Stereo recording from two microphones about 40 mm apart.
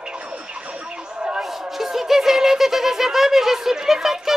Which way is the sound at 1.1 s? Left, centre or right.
Right.